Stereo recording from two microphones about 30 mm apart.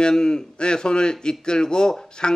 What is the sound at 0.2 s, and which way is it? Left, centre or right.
A man's voice, left.